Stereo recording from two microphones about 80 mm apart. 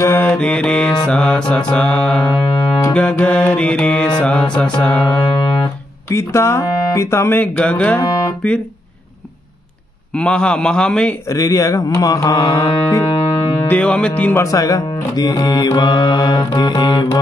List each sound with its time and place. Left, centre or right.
0.2 s mantra: centre
1.0 s music: centre
2.3 s music: left
2.9 s music: centre
5.0 s music: left
6.0 s speech: left
7.5 s music: centre
8.0 s speech: left
10.1 s music: centre
11.2 s music: left
13.7 s music: centre
14.5 s music: left